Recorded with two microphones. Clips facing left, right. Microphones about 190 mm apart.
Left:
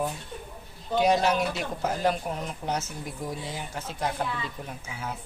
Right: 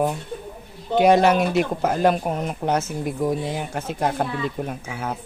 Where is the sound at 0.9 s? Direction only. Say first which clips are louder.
Right 7 dB; 60° right (ahead or behind).